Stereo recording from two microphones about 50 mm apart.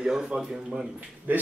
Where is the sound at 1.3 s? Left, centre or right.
Right.